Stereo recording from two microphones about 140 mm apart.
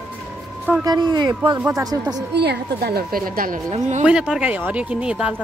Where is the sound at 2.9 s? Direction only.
90° right.